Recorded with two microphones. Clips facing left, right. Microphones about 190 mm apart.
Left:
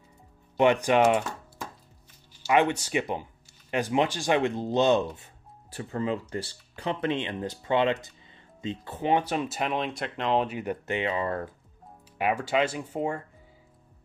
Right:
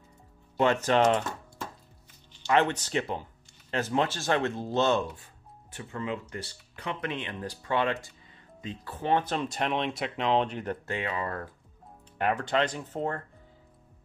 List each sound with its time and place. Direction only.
0.6 s speech: 15° left (ahead or behind)
5.7 s speech: 35° left (ahead or behind); by 11.0 s 10° left (ahead or behind)
11.0 s speech: 25° left (ahead or behind)
12.2 s speech: 10° left (ahead or behind)